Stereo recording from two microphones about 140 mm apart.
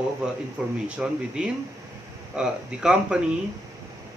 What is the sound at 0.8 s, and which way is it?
Speech, 5° right (ahead or behind).